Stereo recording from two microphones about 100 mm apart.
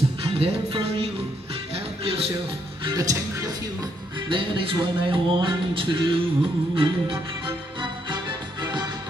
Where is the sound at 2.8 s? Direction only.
40° right (ahead or behind).